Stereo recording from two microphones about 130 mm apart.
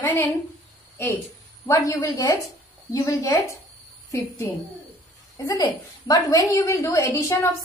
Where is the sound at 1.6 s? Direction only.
25° left (ahead or behind).